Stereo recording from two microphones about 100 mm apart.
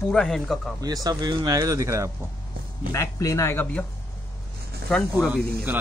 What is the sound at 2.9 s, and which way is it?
Speech, 30° left (ahead or behind).